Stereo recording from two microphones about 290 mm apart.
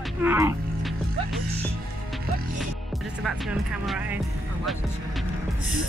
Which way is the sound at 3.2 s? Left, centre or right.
Centre.